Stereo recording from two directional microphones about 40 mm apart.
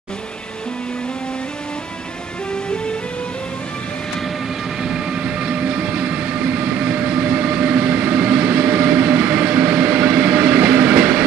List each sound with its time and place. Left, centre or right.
5.1 s train: right